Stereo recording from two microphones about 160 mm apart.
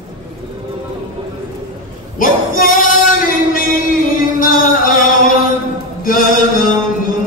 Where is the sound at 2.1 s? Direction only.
60° left (ahead or behind).